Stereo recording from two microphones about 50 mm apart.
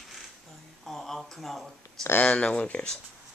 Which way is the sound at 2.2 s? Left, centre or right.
Left.